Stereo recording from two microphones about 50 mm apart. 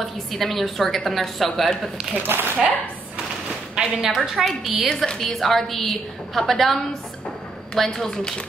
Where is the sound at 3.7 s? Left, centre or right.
Centre.